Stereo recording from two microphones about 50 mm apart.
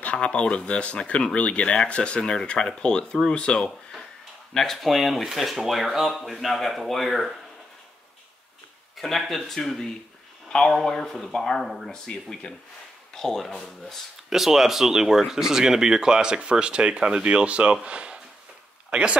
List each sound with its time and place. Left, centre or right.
0.0 s speech: left
4.6 s speech: centre
8.9 s speech: centre
14.3 s speech: centre